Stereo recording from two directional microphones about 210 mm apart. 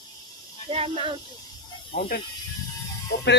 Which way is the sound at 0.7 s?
25° right (ahead or behind).